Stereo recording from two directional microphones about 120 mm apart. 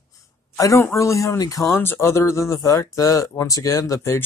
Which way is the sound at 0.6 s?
25° left (ahead or behind).